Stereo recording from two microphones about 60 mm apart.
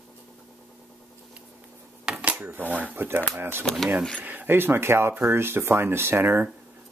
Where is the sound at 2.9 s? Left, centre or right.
Right.